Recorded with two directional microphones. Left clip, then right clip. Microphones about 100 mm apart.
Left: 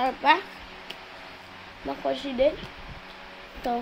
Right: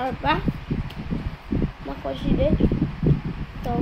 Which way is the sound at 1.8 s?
5° left (ahead or behind).